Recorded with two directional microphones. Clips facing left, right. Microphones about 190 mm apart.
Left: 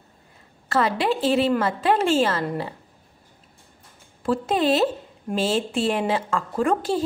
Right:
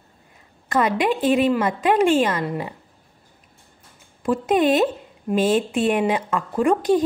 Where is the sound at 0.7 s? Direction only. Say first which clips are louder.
Right 2 dB; 15° right (ahead or behind).